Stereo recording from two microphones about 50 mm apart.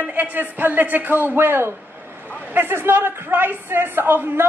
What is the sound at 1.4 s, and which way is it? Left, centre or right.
Speech, right.